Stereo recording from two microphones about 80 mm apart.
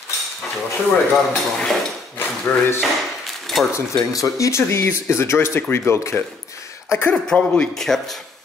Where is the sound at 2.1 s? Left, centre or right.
Left.